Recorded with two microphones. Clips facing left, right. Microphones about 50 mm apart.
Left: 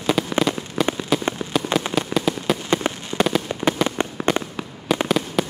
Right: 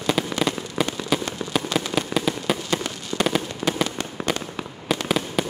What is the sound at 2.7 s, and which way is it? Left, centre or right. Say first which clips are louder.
Fireworks: left 4 dB; left.